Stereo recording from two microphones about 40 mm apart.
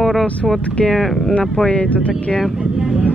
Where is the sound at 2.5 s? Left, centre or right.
Centre.